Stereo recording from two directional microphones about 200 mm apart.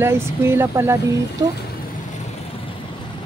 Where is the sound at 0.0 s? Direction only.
15° right (ahead or behind).